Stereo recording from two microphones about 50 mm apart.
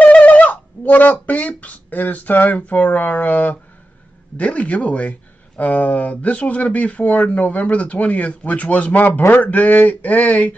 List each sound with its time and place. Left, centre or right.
0.0 s speech: left